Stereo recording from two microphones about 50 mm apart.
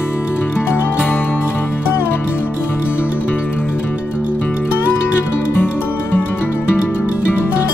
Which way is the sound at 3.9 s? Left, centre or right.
Left.